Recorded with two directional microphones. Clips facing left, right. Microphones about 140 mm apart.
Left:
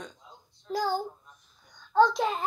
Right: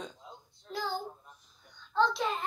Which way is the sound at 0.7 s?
40° left (ahead or behind).